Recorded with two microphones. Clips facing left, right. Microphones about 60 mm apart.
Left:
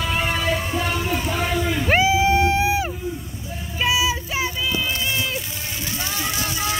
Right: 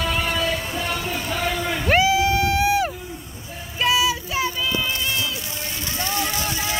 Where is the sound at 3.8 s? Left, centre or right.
Centre.